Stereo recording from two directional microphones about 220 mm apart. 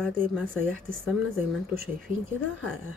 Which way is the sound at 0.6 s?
40° right (ahead or behind).